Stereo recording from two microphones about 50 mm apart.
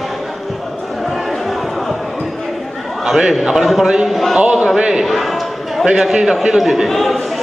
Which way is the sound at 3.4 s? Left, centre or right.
Centre.